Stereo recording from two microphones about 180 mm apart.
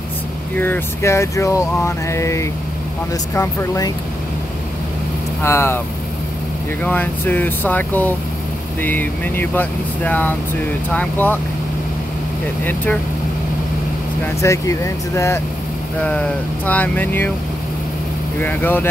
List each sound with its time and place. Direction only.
0.6 s speech: 10° left (ahead or behind)
5.4 s speech: 15° left (ahead or behind)
6.8 s speech: 10° left (ahead or behind)
12.6 s speech: 10° left (ahead or behind)
14.4 s speech: 15° left (ahead or behind)
18.4 s speech: 10° left (ahead or behind)